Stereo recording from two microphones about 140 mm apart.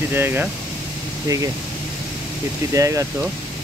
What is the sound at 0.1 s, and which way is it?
Speech, 15° right (ahead or behind).